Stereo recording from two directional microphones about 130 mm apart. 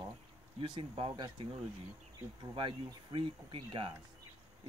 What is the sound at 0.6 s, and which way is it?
Speech, 40° right (ahead or behind).